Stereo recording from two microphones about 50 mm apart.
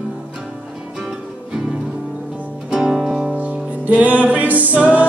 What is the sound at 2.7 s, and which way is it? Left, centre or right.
Music, centre.